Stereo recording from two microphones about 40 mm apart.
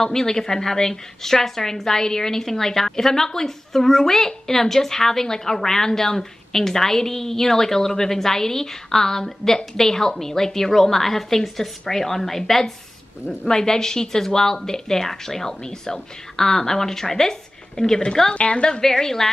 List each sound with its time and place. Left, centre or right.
0.0 s a woman's voice: centre
18.3 s a woman's voice: left
18.7 s a woman's voice: centre